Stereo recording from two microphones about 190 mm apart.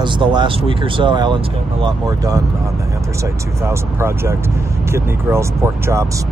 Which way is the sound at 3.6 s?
15° right (ahead or behind).